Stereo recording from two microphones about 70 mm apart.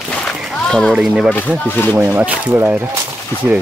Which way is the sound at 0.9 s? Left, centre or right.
Centre.